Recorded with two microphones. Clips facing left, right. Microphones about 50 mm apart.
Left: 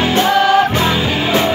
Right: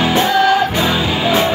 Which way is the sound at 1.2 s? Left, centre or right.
Centre.